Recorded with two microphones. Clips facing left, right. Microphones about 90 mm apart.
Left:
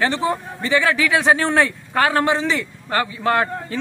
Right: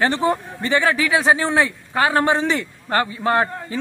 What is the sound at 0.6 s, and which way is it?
Speech, 30° right (ahead or behind).